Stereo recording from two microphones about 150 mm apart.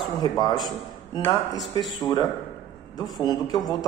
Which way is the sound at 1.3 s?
30° left (ahead or behind).